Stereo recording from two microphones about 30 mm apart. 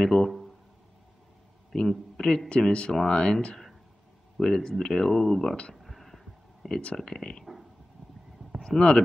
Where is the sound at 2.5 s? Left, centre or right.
Left.